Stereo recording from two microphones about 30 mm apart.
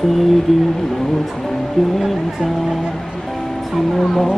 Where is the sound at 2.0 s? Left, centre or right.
Centre.